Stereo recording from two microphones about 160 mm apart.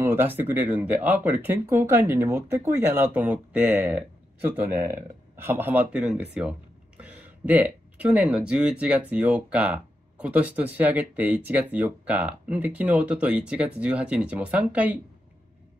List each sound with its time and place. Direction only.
0.0 s speech: 15° right (ahead or behind)